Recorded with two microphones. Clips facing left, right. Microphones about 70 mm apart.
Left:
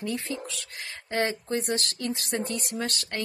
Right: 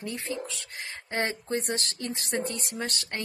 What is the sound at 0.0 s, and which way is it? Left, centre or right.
Speech, right.